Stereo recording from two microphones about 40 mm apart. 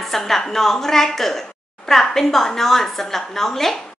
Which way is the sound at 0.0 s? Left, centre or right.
Centre.